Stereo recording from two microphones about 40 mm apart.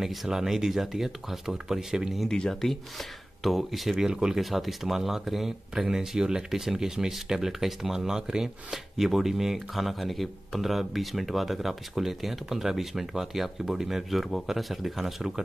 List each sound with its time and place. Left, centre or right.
0.0 s speech: centre
2.2 s speech: left
3.4 s speech: centre
4.0 s speech: centre
4.5 s speech: centre